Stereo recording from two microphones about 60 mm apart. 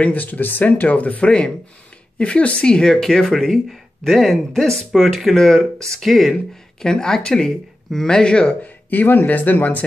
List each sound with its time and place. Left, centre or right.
0.0 s speech: left
8.9 s speech: left